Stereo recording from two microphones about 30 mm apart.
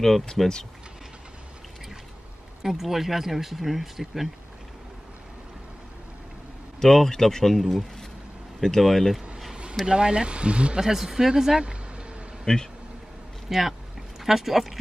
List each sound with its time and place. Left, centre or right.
0.0 s speech: centre
2.6 s speech: centre
6.8 s speech: centre
8.6 s speech: centre
9.8 s speech: right
10.8 s speech: centre
12.5 s a man's voice: centre
13.5 s speech: centre